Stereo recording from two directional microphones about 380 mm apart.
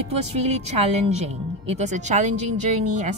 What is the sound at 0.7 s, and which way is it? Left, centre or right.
A woman's voice, centre.